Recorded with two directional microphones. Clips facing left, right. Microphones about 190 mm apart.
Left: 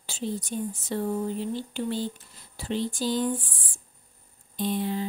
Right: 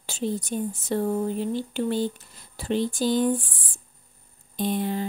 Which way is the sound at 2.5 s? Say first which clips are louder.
Right 4 dB; 50° right (ahead or behind).